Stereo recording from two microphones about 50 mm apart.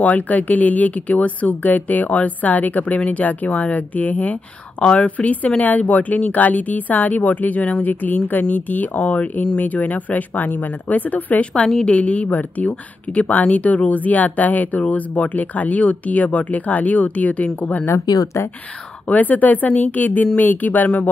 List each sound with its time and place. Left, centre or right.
0.0 s speech: left
11.6 s speech: left
17.8 s speech: left
19.0 s speech: left